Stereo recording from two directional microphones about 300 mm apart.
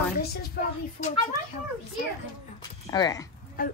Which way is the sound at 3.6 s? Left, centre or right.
Left.